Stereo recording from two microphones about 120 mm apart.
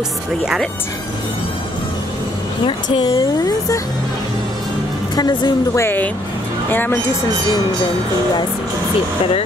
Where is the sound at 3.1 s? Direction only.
30° left (ahead or behind).